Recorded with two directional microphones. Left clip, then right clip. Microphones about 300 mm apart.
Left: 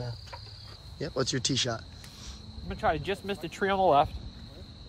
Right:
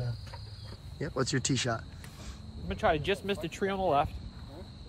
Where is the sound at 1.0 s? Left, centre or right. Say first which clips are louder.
Left 2 dB; centre.